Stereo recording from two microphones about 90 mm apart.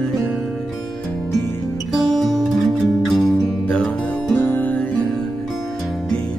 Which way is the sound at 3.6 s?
10° left (ahead or behind).